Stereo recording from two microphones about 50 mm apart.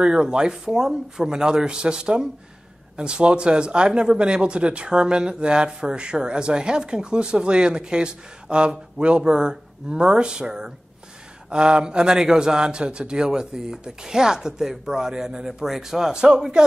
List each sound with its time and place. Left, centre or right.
0.0 s speech: centre